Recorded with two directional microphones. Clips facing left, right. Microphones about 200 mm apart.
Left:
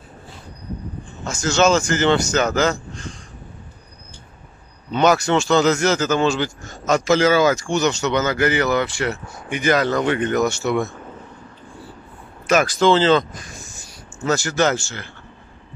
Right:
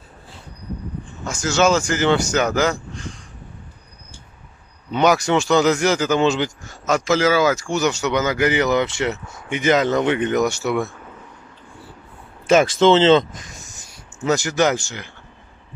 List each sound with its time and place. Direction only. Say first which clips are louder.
1.2 s speech: left 1 dB; 10° right (ahead or behind)
4.9 s speech: even; 15° right (ahead or behind)
6.9 s speech: left 1 dB; 5° right (ahead or behind)
12.4 s speech: right 2 dB; 25° right (ahead or behind)